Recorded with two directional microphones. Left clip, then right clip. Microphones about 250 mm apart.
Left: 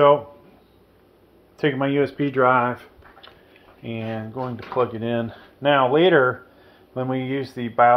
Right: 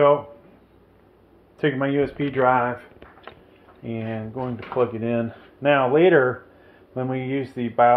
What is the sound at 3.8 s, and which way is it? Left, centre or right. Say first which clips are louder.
Speech: left 1 dB; centre.